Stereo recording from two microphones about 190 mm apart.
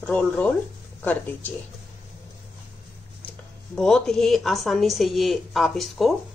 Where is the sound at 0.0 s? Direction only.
5° left (ahead or behind).